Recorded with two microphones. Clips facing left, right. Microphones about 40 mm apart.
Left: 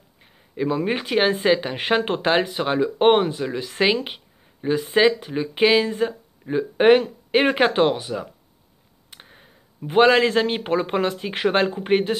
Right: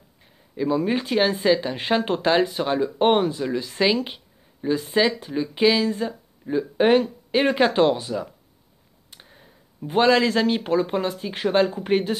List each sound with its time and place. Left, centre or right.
0.2 s speech: left
9.1 s a sound: left
9.8 s speech: left
11.7 s speech: left